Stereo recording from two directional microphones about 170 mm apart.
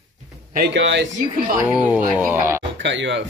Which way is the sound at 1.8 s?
10° right (ahead or behind).